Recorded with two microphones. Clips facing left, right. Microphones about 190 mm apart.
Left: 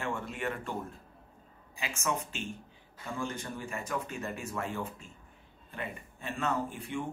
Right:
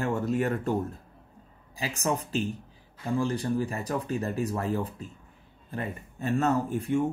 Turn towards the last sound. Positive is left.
turn(degrees=-40)  # may be behind; listen again after turning